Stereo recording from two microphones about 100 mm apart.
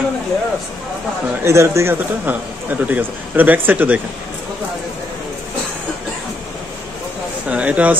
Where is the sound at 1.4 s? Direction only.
30° right (ahead or behind).